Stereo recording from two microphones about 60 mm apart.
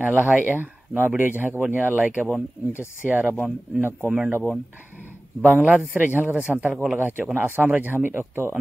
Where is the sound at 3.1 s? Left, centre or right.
Right.